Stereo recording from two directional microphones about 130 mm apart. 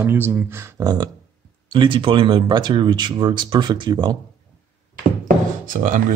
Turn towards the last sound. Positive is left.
turn(degrees=-90)